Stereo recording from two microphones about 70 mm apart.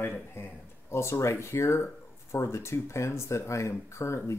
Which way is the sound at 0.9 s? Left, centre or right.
Left.